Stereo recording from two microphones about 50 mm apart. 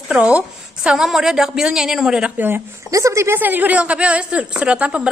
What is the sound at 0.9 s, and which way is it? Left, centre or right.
A woman's voice, centre.